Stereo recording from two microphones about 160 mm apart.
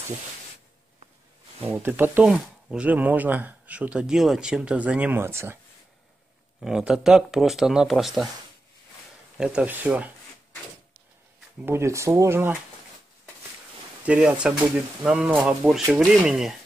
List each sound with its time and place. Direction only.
1.7 s speech: 10° right (ahead or behind)
6.6 s speech: 5° right (ahead or behind)
9.4 s speech: 5° right (ahead or behind)
11.6 s speech: 15° right (ahead or behind)
14.0 s speech: 10° right (ahead or behind)